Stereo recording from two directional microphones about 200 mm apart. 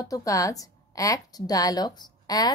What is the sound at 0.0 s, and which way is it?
A woman's voice, 15° left (ahead or behind).